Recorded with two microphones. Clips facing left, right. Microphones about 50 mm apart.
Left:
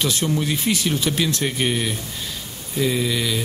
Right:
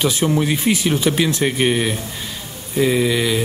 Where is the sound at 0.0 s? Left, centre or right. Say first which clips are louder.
Right 4 dB; centre.